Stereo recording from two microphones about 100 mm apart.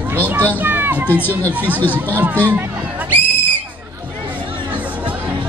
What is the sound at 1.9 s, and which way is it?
Speech, 15° right (ahead or behind).